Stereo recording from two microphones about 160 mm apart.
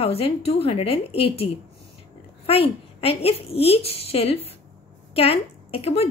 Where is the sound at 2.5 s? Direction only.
40° left (ahead or behind).